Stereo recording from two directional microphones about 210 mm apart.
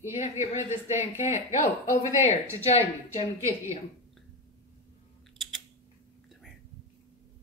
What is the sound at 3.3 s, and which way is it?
Speech, 15° right (ahead or behind).